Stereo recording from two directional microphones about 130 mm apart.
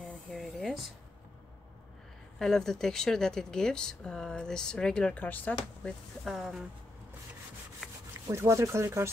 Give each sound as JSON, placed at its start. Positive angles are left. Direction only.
{"t": 0.3, "sound": "a sound", "side_deg": 0}
{"t": 2.3, "sound": "speech", "side_deg": 5}
{"t": 6.2, "sound": "speech", "side_deg": 0}
{"t": 8.1, "sound": "speech", "side_deg": -20}